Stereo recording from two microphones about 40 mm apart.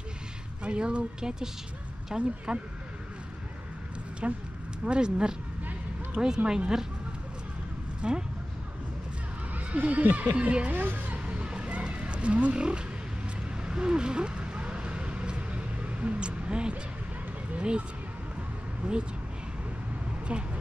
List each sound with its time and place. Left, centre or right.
0.7 s speech: right
4.2 s speech: right
8.0 s speech: right
9.7 s speech: right
10.7 s a woman's voice: right
11.2 s roaring cats: right
13.7 s vehicle: right
17.6 s speech: right
18.8 s speech: centre
20.3 s speech: right